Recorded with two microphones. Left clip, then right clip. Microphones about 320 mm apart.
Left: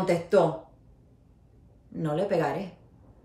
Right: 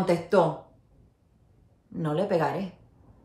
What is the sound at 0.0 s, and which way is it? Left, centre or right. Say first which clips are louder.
Speech: even; centre.